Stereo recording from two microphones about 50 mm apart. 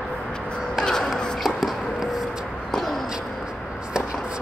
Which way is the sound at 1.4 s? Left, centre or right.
Centre.